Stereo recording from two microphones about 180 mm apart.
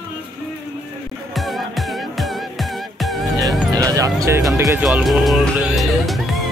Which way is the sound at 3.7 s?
20° right (ahead or behind).